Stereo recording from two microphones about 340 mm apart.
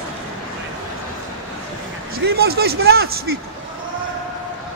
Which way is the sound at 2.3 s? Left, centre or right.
Right.